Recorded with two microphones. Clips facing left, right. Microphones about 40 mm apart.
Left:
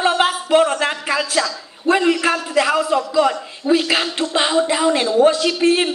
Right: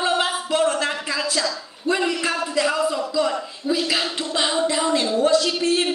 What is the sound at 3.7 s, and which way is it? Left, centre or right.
Speech, left.